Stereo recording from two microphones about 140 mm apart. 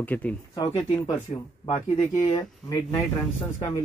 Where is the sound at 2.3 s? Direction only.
30° left (ahead or behind).